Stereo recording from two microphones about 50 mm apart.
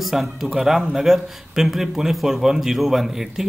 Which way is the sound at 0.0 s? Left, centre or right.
Centre.